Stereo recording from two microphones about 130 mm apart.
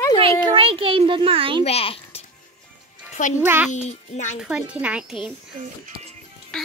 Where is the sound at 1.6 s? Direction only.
50° left (ahead or behind).